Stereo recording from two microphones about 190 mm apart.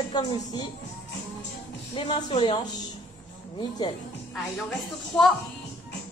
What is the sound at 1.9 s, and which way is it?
Speech, 25° left (ahead or behind).